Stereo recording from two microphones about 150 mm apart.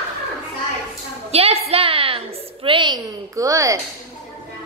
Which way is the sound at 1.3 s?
40° right (ahead or behind).